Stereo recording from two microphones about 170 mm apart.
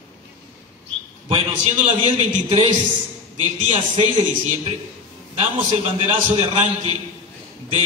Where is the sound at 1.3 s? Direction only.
30° right (ahead or behind).